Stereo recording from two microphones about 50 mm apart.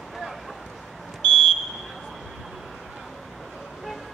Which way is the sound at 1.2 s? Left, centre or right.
Centre.